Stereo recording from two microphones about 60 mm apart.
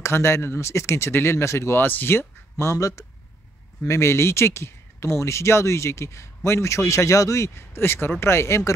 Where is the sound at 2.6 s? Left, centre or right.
Left.